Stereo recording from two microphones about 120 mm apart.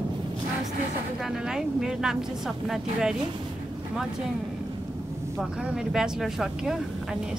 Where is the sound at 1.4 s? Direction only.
5° right (ahead or behind).